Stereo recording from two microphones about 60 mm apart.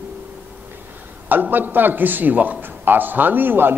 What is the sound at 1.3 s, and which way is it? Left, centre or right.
A man's voice, right.